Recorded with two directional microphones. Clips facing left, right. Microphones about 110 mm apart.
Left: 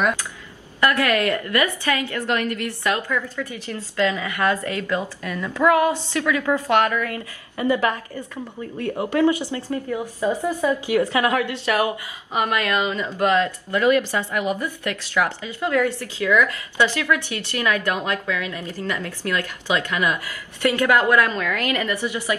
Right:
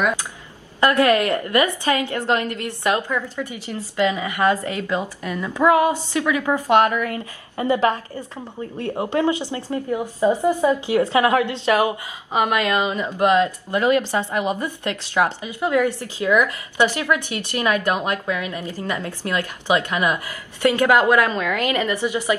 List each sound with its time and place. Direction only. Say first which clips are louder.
0.7 s a woman's voice: right 3 dB; 20° right (ahead or behind)